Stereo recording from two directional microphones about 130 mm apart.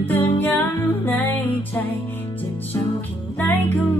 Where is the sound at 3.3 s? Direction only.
15° left (ahead or behind).